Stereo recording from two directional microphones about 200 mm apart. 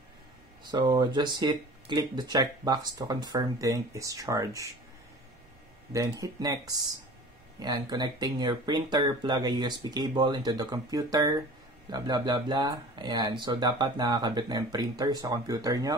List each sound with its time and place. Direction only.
0.7 s speech: 20° right (ahead or behind)
5.9 s speech: 15° right (ahead or behind)